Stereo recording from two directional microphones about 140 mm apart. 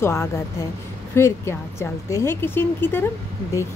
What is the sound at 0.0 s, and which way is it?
A woman's voice, 20° left (ahead or behind).